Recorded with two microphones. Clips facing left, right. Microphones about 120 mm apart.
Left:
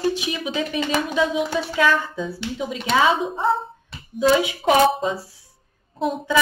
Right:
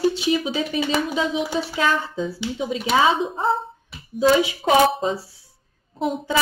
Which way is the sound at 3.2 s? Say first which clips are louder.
Left 1 dB; centre (ahead or behind).